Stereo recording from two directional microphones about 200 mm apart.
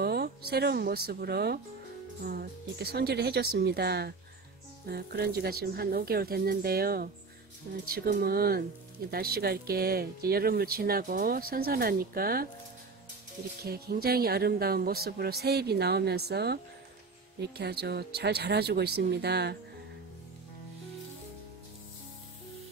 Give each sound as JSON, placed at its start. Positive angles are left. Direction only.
{"t": 0.0, "sound": "speech", "side_deg": -50}
{"t": 13.7, "sound": "speech", "side_deg": -50}
{"t": 17.6, "sound": "speech", "side_deg": -55}